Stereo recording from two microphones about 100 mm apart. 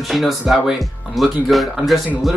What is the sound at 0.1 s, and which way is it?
Speech, centre (ahead or behind).